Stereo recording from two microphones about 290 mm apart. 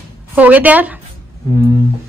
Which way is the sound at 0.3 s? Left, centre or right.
Centre.